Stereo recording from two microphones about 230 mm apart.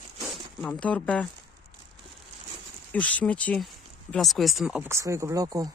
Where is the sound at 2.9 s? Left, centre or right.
Centre.